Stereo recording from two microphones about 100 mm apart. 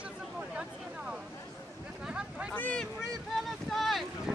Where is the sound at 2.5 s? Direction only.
15° left (ahead or behind).